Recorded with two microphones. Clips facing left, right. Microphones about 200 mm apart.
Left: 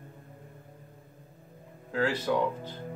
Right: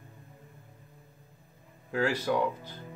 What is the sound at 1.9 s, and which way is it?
Speech, 10° right (ahead or behind).